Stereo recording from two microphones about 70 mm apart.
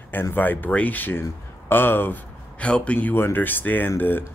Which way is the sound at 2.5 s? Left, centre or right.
Centre.